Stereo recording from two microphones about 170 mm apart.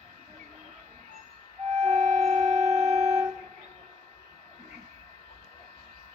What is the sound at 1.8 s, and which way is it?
Music, 45° right (ahead or behind).